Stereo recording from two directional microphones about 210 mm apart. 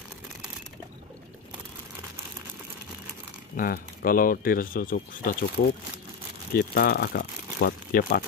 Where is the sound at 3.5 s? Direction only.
40° left (ahead or behind).